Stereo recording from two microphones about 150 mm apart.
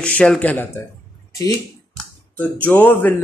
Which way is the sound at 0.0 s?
10° left (ahead or behind).